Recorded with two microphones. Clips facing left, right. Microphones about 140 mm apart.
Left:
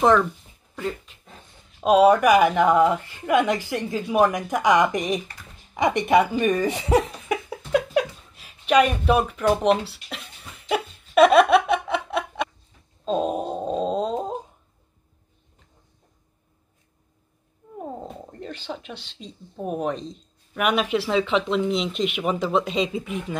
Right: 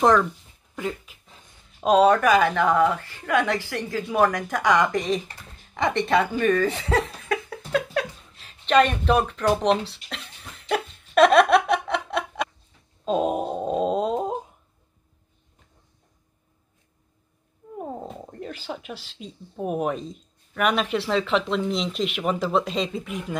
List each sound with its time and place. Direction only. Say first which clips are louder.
0.7 s speech: even; 5° right (ahead or behind)
1.8 s a woman's voice: left 2 dB; 5° left (ahead or behind)
9.6 s chuckle: left 1 dB; 5° left (ahead or behind)
13.0 s wail: right 1 dB; 5° right (ahead or behind)
17.7 s speech: right 1 dB; 10° right (ahead or behind)